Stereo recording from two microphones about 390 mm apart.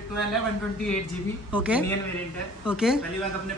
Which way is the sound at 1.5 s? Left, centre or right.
Centre.